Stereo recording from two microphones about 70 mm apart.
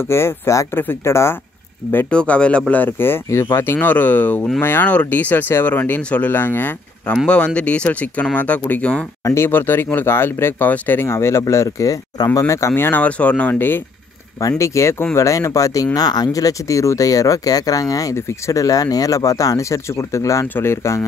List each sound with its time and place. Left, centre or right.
0.0 s speech: left
2.0 s speech: centre
2.7 s speech: left
3.3 s speech: left
7.2 s speech: centre
9.2 s speech: left
13.0 s speech: centre
14.6 s speech: left